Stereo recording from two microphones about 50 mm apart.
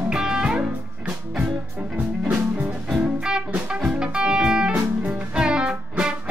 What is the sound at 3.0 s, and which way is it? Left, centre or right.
Music, centre.